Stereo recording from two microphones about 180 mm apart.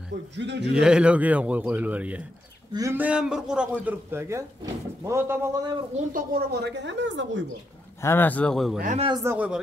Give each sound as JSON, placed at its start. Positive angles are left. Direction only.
{"t": 0.4, "sound": "speech", "side_deg": -75}
{"t": 0.7, "sound": "a man's voice", "side_deg": -5}
{"t": 6.1, "sound": "speech", "side_deg": -60}
{"t": 8.0, "sound": "speech", "side_deg": 10}
{"t": 8.8, "sound": "a man's voice", "side_deg": -35}
{"t": 9.1, "sound": "a man's voice", "side_deg": -15}